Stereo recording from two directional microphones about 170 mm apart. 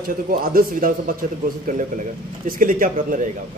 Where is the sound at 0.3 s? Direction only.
55° right (ahead or behind).